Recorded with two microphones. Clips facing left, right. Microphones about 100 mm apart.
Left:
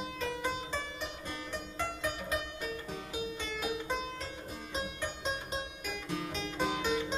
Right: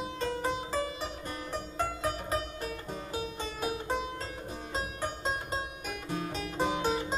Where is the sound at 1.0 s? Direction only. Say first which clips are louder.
Right 3 dB; 45° right (ahead or behind).